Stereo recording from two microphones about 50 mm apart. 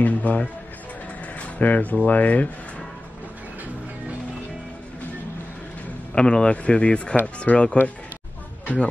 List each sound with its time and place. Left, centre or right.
0.0 s music: left
1.6 s speech: left
6.1 s speech: centre